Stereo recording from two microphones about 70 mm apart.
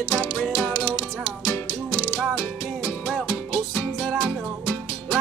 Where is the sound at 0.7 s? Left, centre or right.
Right.